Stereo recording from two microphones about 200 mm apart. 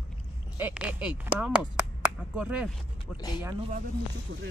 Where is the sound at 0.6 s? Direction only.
5° right (ahead or behind).